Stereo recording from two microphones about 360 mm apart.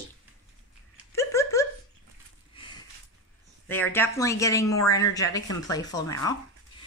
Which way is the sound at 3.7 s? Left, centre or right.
Centre.